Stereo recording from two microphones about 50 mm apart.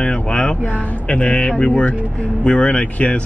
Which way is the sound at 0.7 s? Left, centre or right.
Left.